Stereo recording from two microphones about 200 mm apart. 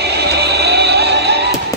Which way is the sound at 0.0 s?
55° right (ahead or behind).